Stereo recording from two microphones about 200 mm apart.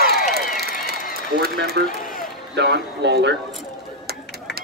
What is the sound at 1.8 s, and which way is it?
Run, 50° right (ahead or behind).